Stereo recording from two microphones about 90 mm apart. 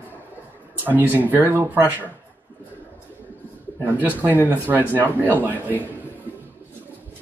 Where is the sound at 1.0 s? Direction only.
20° left (ahead or behind).